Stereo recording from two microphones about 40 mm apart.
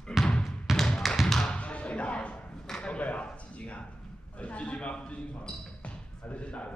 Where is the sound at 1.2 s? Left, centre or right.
Centre.